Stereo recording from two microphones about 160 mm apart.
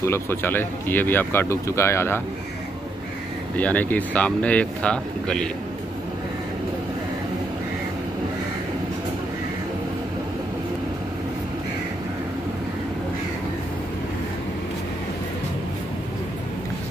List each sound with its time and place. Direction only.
0.0 s speech: 15° left (ahead or behind)
3.5 s speech: 10° left (ahead or behind)